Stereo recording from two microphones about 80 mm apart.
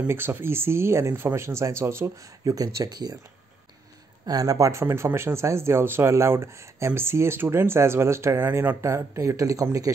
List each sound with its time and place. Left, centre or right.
0.1 s speech: right
2.4 s speech: right
4.3 s speech: right
8.5 s speech: right
8.8 s speech: right